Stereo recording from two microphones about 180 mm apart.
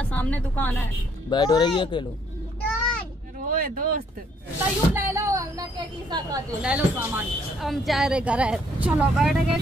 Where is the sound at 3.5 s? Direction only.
55° right (ahead or behind).